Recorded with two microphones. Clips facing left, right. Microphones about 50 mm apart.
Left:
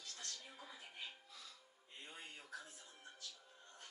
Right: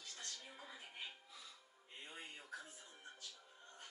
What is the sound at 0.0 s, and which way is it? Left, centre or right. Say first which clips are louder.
Music: even; right.